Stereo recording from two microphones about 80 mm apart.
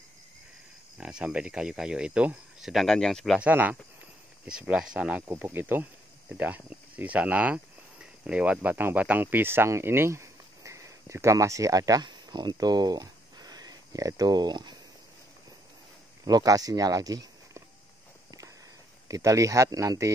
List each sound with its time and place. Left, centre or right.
0.9 s speech: centre
2.7 s speech: centre
3.3 s speech: right
5.5 s speech: right
16.3 s speech: right
19.0 s speech: right